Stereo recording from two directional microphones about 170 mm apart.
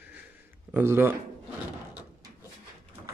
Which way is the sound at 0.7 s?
15° right (ahead or behind).